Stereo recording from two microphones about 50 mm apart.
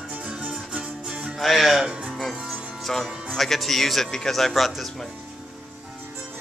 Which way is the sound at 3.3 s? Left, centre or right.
Centre.